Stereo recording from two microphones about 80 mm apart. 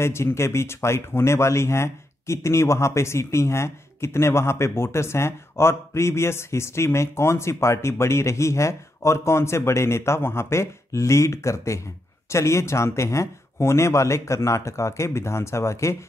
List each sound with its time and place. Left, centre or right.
0.0 s speech: left